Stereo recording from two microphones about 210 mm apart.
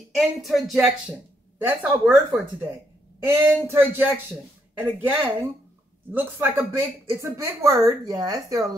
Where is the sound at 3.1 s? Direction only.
10° right (ahead or behind).